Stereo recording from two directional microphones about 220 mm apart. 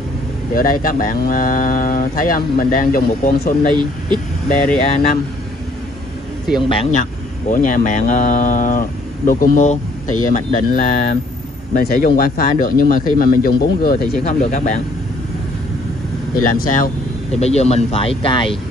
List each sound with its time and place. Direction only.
0.6 s speech: 40° left (ahead or behind)
4.8 s speech: 35° left (ahead or behind)
6.7 s speech: 30° left (ahead or behind)
16.4 s speech: 40° left (ahead or behind); by 18.6 s 25° left (ahead or behind)